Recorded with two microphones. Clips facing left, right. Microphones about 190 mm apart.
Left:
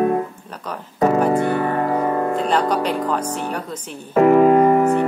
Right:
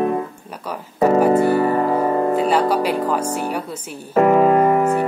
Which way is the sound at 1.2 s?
5° right (ahead or behind).